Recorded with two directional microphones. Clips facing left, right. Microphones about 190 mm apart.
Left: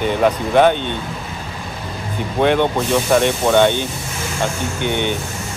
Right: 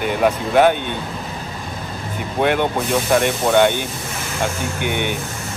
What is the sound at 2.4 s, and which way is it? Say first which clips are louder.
Speech: left 3 dB; 5° right (ahead or behind).